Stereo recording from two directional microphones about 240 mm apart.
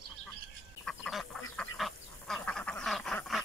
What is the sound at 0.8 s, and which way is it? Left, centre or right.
Duck, centre.